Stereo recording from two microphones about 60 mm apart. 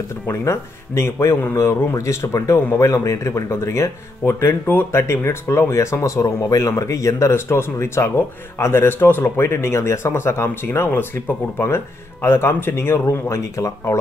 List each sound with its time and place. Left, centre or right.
0.3 s speech: left
6.0 s speech: left
13.0 s speech: left